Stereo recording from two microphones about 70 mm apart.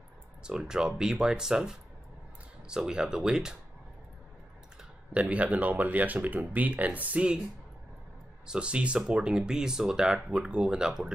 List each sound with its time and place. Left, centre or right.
0.4 s speech: centre
5.1 s speech: centre
8.5 s speech: centre